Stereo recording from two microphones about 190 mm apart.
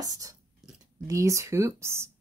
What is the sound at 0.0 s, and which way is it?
Speech, 20° right (ahead or behind).